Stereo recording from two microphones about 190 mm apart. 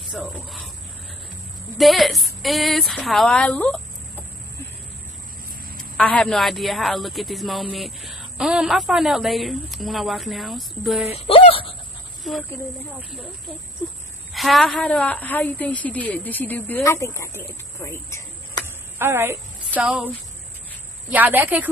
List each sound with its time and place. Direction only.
0.1 s a man's voice: 5° right (ahead or behind)
1.8 s a man's voice: centre (ahead or behind)
5.9 s a man's voice: 5° left (ahead or behind)
11.1 s speech: 30° left (ahead or behind)
12.2 s speech: centre (ahead or behind)
14.3 s a woman's voice: centre (ahead or behind)
18.9 s a woman's voice: 10° right (ahead or behind)
21.1 s a woman's voice: 10° right (ahead or behind)